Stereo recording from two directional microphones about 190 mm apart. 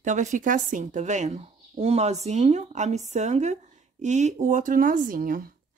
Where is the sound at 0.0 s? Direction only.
40° right (ahead or behind).